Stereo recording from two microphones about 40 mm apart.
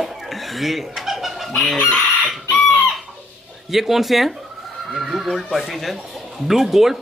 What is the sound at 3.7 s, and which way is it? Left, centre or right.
Speech, centre.